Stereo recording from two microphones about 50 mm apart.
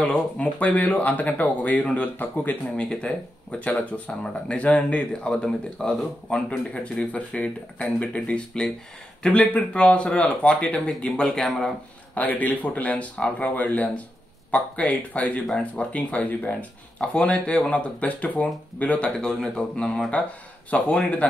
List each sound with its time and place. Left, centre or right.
0.0 s speech: left
2.8 s speech: left
4.1 s speech: left
5.8 s speech: centre
6.7 s speech: left
12.1 s speech: left
19.0 s speech: centre